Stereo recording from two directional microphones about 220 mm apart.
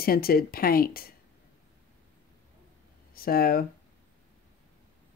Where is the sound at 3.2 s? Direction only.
40° left (ahead or behind).